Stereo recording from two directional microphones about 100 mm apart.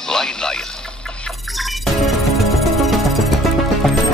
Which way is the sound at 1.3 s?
Centre (ahead or behind).